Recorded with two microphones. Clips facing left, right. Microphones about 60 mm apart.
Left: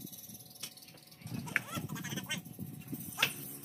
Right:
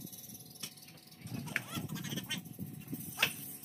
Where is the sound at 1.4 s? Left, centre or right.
Centre.